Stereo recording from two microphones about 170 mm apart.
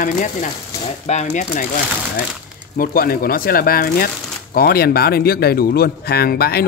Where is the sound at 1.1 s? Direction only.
45° left (ahead or behind).